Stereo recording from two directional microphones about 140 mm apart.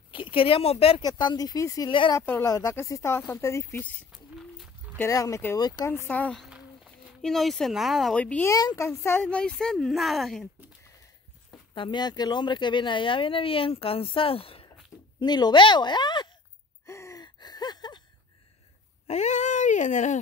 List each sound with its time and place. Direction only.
0.1 s speech: 40° left (ahead or behind)
1.0 s speech: 30° left (ahead or behind)
2.1 s speech: 20° left (ahead or behind)
4.1 s a sound: centre (ahead or behind)
4.9 s speech: 20° left (ahead or behind)
6.0 s speech: 10° left (ahead or behind)
6.4 s speech: centre (ahead or behind)
8.5 s speech: 25° left (ahead or behind)
9.2 s speech: 5° left (ahead or behind)
11.7 s speech: 35° left (ahead or behind)
15.1 s speech: 30° left (ahead or behind)
16.8 s gasp: 20° left (ahead or behind)
19.0 s speech: 55° left (ahead or behind)